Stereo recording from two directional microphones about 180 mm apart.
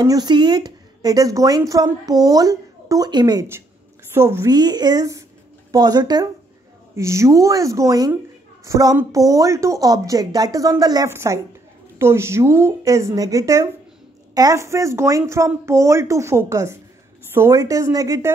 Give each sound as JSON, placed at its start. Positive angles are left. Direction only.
{"t": 0.0, "sound": "speech", "side_deg": -20}